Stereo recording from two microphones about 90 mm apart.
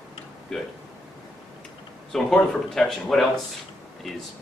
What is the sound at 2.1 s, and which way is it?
Speech, 5° left (ahead or behind).